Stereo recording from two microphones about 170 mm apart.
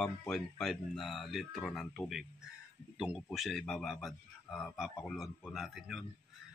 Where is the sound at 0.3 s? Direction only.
Centre (ahead or behind).